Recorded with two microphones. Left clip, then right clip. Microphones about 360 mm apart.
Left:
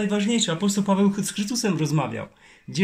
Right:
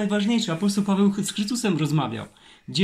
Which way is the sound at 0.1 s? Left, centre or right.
Left.